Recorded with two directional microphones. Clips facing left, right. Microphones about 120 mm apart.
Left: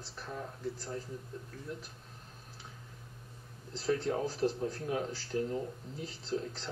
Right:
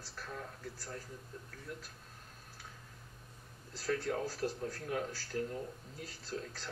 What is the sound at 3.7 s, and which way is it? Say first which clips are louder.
A man's voice: left 4 dB; 20° left (ahead or behind).